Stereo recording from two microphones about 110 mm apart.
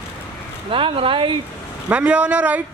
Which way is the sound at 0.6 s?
55° right (ahead or behind).